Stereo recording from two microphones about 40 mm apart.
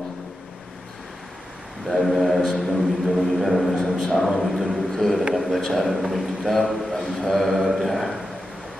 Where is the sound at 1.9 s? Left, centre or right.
Centre.